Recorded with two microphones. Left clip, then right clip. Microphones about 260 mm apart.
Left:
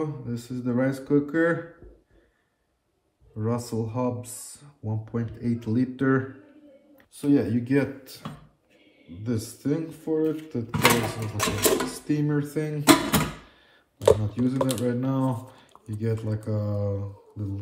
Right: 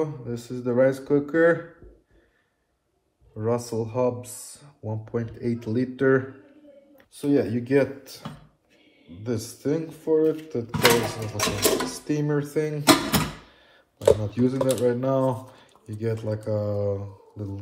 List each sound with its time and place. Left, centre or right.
0.0 s speech: centre
3.3 s speech: centre
14.4 s speech: centre